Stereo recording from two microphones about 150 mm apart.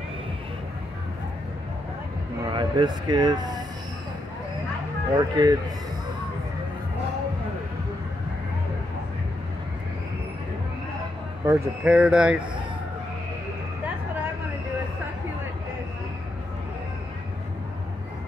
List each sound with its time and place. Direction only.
2.5 s speech: 30° right (ahead or behind)
5.1 s speech: 25° right (ahead or behind)
11.4 s speech: 10° right (ahead or behind)